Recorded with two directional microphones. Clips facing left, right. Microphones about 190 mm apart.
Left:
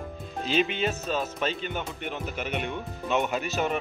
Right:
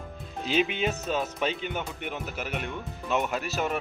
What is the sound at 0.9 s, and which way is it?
Speech, 15° right (ahead or behind).